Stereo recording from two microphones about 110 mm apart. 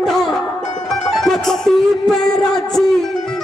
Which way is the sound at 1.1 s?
5° left (ahead or behind).